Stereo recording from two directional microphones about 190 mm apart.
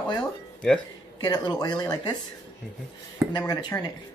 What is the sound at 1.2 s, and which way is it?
Speech, 20° left (ahead or behind).